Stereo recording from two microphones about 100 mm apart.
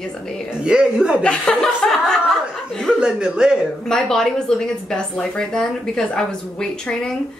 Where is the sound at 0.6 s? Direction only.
10° right (ahead or behind).